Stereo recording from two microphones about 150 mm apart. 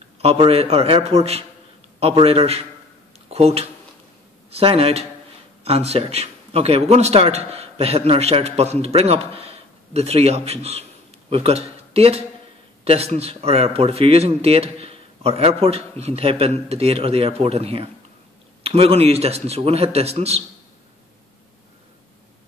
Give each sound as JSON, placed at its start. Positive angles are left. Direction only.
{"t": 0.2, "sound": "a man's voice", "side_deg": -40}